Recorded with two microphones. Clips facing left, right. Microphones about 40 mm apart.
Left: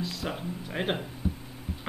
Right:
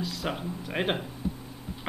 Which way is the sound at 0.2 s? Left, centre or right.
Centre.